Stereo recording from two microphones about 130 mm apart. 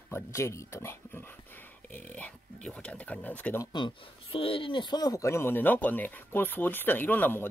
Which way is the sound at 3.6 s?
35° left (ahead or behind).